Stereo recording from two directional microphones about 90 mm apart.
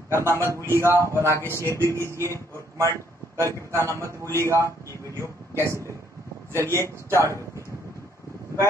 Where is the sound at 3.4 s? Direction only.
35° right (ahead or behind).